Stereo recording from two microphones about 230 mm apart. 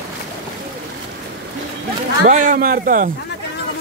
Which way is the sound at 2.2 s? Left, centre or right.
Right.